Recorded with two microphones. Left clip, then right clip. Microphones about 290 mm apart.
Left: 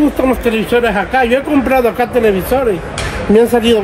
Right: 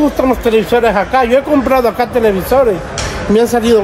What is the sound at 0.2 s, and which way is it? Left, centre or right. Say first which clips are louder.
Speech: right 2 dB; right.